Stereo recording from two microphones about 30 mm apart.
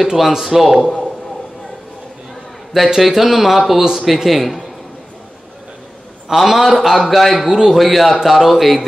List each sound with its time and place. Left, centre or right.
0.1 s a man's voice: centre
0.7 s a man's voice: centre
3.0 s speech: centre
6.3 s speech: centre
7.4 s a man's voice: centre
7.7 s speech: centre
8.2 s speech: centre